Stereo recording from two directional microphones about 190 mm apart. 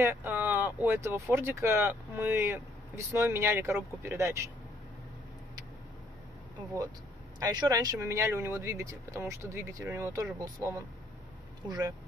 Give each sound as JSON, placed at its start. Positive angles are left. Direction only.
{"t": 0.0, "sound": "speech", "side_deg": -10}
{"t": 7.3, "sound": "speech", "side_deg": -20}